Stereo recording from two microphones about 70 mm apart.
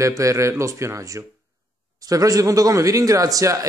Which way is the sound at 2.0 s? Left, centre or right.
Right.